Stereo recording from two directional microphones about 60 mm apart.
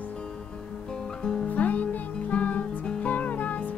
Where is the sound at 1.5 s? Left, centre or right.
Left.